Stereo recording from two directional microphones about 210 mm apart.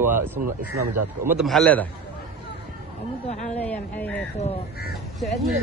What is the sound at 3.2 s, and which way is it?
Speech, 35° left (ahead or behind).